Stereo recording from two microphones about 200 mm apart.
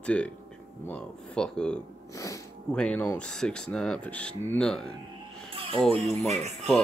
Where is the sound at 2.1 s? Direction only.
15° left (ahead or behind).